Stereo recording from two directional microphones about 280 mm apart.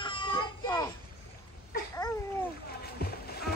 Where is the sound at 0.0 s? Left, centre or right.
Centre.